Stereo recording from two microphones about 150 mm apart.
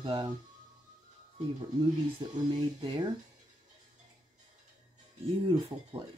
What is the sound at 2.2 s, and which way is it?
Speech, 30° right (ahead or behind).